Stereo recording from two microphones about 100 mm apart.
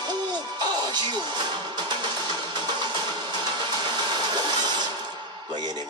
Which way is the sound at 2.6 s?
50° right (ahead or behind).